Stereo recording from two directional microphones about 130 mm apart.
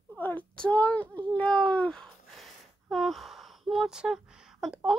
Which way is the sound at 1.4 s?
10° left (ahead or behind).